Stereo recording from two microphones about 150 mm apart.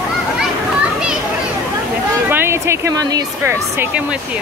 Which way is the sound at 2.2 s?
15° right (ahead or behind).